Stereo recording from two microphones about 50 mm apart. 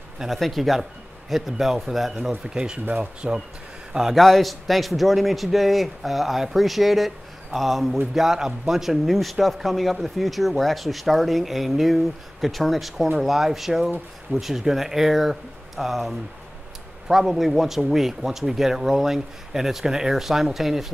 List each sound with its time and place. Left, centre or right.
0.3 s speech: centre
2.2 s speech: centre
2.8 s speech: right
3.2 s speech: centre
4.2 s speech: centre